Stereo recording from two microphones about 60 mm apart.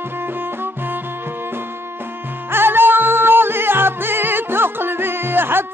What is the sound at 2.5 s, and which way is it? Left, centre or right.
Music, right.